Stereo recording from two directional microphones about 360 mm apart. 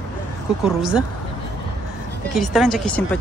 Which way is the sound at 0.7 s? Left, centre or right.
Centre.